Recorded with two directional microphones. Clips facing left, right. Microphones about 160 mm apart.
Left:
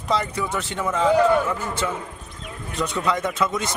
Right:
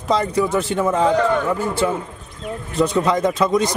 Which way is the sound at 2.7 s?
30° right (ahead or behind).